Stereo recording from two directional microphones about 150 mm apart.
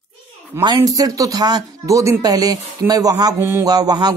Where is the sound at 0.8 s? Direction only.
20° right (ahead or behind).